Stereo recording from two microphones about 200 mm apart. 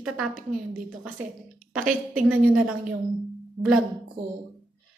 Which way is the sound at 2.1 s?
5° right (ahead or behind).